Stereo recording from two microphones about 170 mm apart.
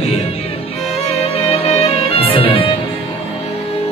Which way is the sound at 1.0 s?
35° left (ahead or behind).